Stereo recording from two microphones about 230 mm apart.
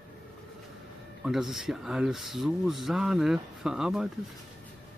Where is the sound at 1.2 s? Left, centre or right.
Centre.